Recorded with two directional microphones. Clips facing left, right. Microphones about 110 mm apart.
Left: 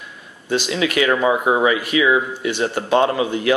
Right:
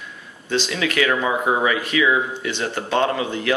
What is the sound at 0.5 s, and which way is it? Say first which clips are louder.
Speech: left 3 dB; 20° left (ahead or behind).